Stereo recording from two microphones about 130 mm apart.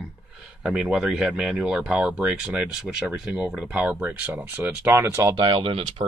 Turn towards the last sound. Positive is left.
turn(degrees=-45)  # may be behind; listen again after turning